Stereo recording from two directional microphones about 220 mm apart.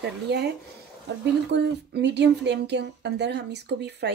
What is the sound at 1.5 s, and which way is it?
Speech, 50° right (ahead or behind).